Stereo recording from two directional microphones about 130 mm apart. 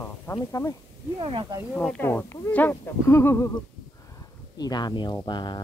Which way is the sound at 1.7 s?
10° left (ahead or behind).